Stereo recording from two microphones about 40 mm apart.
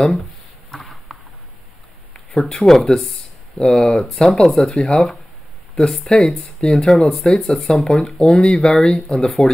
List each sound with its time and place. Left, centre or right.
2.3 s speech: centre
4.6 s speech: left
6.9 s speech: centre
8.2 s speech: left